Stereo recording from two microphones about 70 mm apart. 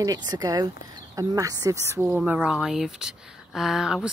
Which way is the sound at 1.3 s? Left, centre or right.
Right.